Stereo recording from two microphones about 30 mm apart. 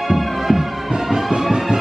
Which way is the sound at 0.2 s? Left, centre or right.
Centre.